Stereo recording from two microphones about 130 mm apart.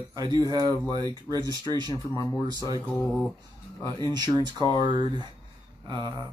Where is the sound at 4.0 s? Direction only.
30° right (ahead or behind).